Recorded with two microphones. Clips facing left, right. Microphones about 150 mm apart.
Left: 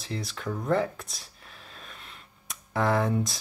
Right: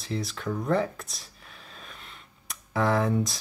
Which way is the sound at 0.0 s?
Centre (ahead or behind).